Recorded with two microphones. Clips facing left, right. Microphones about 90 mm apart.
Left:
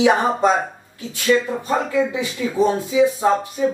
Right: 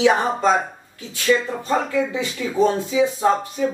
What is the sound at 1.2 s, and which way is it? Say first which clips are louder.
Speech: left 1 dB; 15° left (ahead or behind).